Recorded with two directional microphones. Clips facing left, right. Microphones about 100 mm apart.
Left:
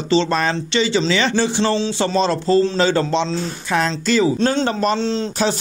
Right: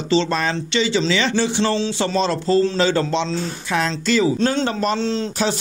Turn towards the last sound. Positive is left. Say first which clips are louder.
# left 1 dB
turn(degrees=25)  # may be behind; listen again after turning